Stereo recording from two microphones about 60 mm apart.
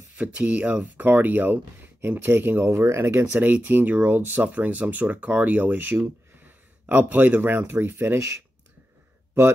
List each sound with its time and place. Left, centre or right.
0.2 s speech: centre; by 2.8 s right
2.8 s speech: right
3.1 s speech: right